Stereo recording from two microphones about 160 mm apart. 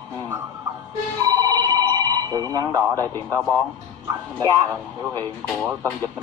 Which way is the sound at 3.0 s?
15° left (ahead or behind).